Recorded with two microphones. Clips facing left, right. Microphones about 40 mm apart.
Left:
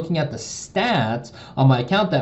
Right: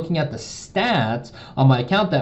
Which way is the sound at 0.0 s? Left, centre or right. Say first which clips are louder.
Even; centre.